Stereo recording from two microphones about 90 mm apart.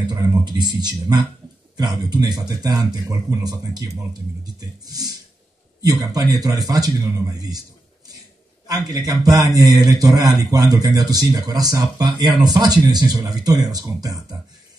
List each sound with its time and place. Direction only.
0.5 s a man's voice: 55° right (ahead or behind)
6.1 s a man's voice: 45° right (ahead or behind)
8.6 s a man's voice: 45° right (ahead or behind)
12.1 s a man's voice: 55° right (ahead or behind)